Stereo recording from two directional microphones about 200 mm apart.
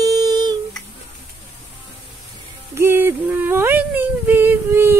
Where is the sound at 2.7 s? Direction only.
10° right (ahead or behind).